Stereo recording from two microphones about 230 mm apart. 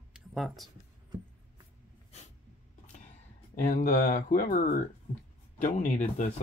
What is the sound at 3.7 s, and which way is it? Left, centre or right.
Mantra, left.